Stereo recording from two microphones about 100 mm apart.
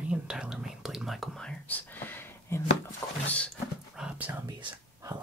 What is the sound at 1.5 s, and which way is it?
Speech, 15° left (ahead or behind).